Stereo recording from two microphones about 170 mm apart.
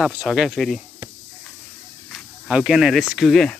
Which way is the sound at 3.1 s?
Centre (ahead or behind).